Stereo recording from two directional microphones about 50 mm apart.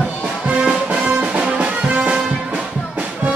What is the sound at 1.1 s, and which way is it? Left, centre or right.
Music, right.